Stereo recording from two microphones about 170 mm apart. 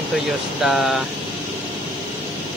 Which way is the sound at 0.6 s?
Centre (ahead or behind).